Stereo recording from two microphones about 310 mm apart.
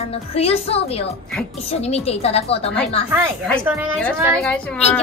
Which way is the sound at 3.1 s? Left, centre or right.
Centre.